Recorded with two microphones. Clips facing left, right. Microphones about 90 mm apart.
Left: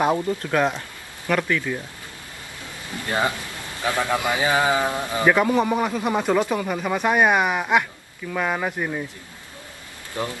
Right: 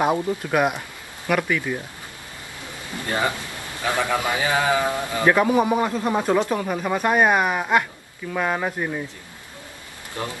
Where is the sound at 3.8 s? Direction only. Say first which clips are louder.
Even; 15° right (ahead or behind).